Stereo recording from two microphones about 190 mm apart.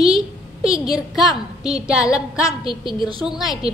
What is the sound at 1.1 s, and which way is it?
A woman's voice, centre (ahead or behind).